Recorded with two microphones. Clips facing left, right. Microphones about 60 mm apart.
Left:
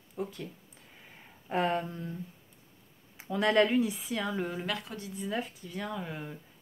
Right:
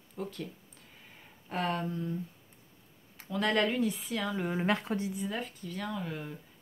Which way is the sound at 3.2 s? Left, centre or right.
Centre.